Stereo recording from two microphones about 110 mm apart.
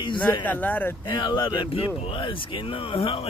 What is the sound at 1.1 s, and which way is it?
Speech, 45° left (ahead or behind).